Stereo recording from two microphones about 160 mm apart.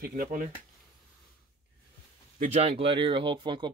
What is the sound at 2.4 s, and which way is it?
Speech, 45° right (ahead or behind).